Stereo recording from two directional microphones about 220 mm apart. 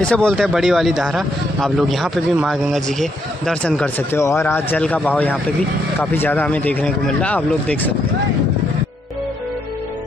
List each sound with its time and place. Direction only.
0.0 s speech: 5° left (ahead or behind)